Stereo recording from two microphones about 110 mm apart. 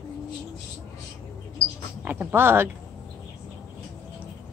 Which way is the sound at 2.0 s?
15° right (ahead or behind).